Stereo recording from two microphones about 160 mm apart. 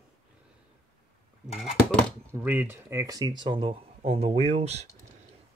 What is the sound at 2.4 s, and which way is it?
Speech, 10° right (ahead or behind).